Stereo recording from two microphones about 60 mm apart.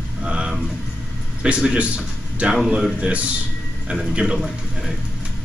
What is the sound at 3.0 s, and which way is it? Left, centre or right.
Speech, centre.